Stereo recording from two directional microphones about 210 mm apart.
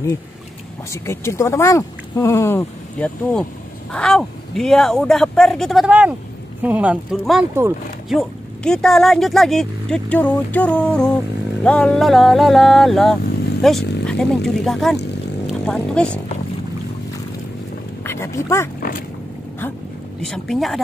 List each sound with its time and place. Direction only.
1.0 s speech: 10° left (ahead or behind)
18.0 s a sound: 15° left (ahead or behind)
20.2 s speech: centre (ahead or behind)